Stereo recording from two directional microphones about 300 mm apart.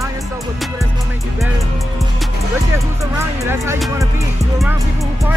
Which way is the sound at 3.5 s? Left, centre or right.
Centre.